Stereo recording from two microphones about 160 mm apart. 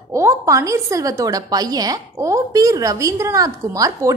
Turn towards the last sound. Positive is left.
turn(degrees=-20)  # may be behind; listen again after turning